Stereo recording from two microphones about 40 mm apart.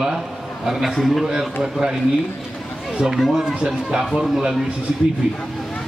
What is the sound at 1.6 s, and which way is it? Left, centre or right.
Speech, centre.